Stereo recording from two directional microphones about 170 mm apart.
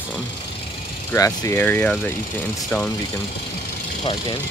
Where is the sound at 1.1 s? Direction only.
20° left (ahead or behind).